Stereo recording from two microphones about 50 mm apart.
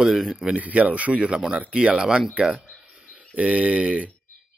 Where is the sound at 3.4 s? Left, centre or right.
Right.